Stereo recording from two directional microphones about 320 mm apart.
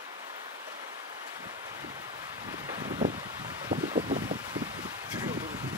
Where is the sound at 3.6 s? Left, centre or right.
Right.